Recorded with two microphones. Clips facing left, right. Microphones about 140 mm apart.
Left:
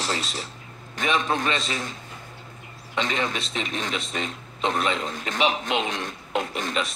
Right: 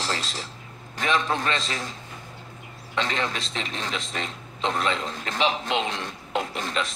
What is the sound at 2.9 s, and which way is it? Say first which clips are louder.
A man's voice: left 1 dB; 10° left (ahead or behind).